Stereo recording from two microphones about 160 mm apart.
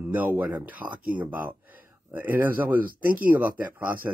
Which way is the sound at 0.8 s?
25° right (ahead or behind).